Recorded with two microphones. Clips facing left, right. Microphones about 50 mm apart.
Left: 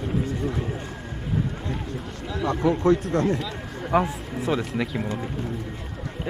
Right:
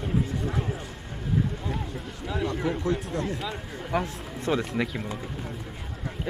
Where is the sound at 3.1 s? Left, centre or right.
Left.